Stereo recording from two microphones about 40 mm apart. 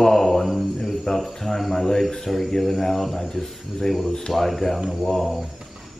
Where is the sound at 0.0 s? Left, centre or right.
Centre.